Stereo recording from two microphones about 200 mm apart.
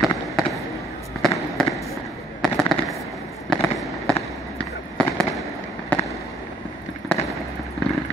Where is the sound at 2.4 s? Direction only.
Centre (ahead or behind).